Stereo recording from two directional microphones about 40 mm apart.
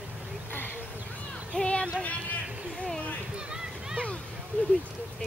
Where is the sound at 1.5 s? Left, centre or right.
Left.